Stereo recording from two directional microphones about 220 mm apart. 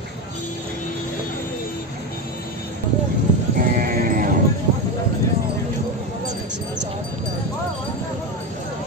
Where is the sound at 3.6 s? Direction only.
40° right (ahead or behind).